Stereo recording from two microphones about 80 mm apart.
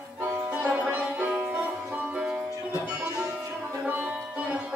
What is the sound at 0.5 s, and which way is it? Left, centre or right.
Music, centre.